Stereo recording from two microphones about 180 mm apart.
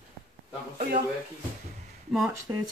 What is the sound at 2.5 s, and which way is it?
Speech, 20° right (ahead or behind).